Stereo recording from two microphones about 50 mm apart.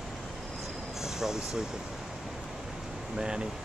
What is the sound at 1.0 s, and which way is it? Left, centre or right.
Speech, centre.